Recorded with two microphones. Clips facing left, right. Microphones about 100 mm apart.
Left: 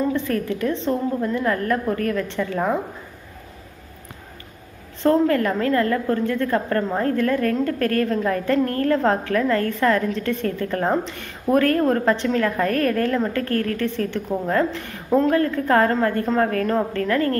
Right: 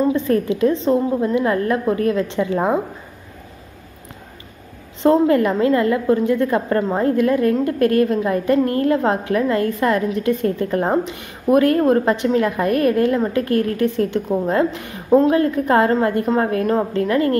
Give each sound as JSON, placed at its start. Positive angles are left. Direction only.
{"t": 0.0, "sound": "a woman's voice", "side_deg": -20}
{"t": 5.0, "sound": "a woman's voice", "side_deg": -20}